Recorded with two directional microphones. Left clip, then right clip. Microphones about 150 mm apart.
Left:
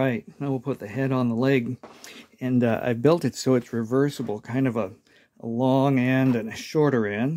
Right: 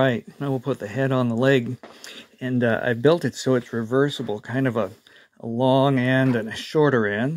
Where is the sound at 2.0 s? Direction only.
15° left (ahead or behind).